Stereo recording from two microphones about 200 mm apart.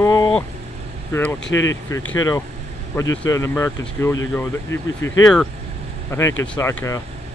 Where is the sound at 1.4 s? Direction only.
70° left (ahead or behind).